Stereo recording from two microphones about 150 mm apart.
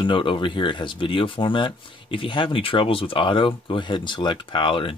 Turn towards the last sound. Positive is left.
turn(degrees=35)  # may be behind; listen again after turning